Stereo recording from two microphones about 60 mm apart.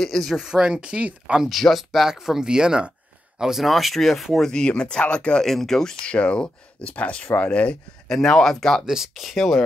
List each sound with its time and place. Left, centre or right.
0.0 s speech: centre
0.4 s speech: centre
1.5 s speech: centre
4.5 s speech: centre
6.1 s speech: centre
8.1 s speech: centre
8.8 s speech: centre